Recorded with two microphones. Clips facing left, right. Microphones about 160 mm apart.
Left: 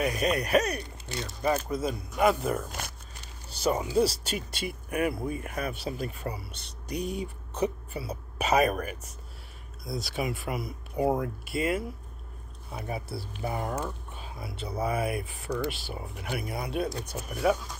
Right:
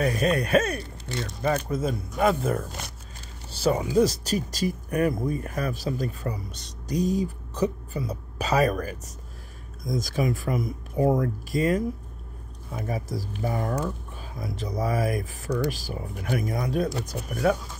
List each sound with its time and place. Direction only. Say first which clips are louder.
0.0 s speech: right 3 dB; 35° right (ahead or behind)
1.9 s speech: right 1 dB; 40° right (ahead or behind)
3.4 s a sound: right 4 dB; 30° right (ahead or behind)
3.7 s speech: right 3 dB; 15° right (ahead or behind)
4.2 s speech: right 7 dB; 40° right (ahead or behind)